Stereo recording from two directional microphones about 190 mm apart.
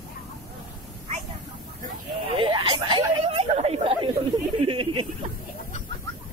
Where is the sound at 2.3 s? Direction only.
25° right (ahead or behind).